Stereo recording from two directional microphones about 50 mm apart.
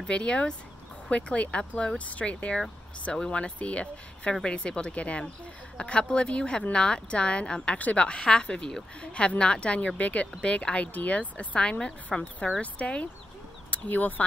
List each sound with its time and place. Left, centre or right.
0.0 s a woman's voice: left